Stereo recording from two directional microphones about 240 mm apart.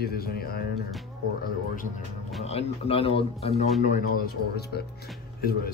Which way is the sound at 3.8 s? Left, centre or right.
Left.